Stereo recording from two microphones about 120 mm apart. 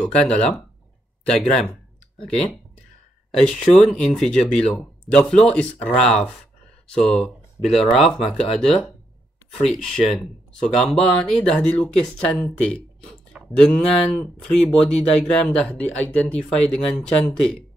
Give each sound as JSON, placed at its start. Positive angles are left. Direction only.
{"t": 0.0, "sound": "speech", "side_deg": 10}
{"t": 3.3, "sound": "speech", "side_deg": 10}
{"t": 8.2, "sound": "speech", "side_deg": 55}
{"t": 9.7, "sound": "speech", "side_deg": 5}